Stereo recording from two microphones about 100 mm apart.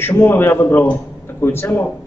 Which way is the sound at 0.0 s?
20° left (ahead or behind).